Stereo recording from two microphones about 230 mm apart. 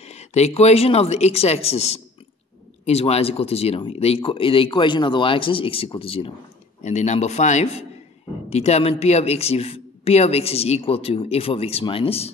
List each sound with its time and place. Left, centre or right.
0.0 s speech: left